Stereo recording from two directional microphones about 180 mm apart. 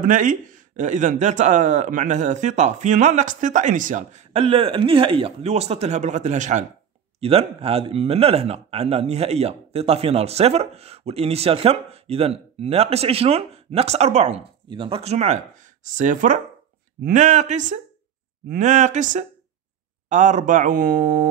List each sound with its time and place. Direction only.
0.0 s speech: 45° right (ahead or behind)